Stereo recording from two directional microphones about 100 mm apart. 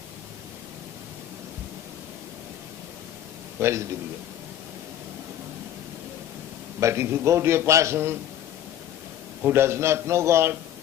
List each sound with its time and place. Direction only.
3.5 s a man's voice: 25° right (ahead or behind)
6.8 s a man's voice: 25° right (ahead or behind)
9.4 s a man's voice: 25° right (ahead or behind)